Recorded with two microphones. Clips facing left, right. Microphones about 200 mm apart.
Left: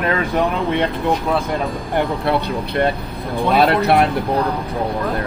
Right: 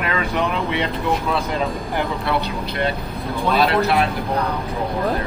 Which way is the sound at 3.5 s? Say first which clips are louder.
Left 3 dB; 60° left (ahead or behind).